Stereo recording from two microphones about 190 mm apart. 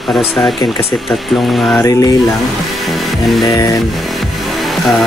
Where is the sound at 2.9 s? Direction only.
Centre (ahead or behind).